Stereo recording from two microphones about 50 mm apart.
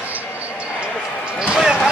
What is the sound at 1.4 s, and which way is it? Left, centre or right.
Basketball bounce, centre.